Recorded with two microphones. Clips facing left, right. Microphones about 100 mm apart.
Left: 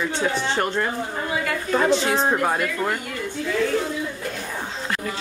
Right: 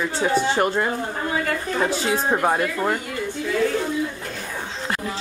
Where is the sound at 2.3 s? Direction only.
15° right (ahead or behind).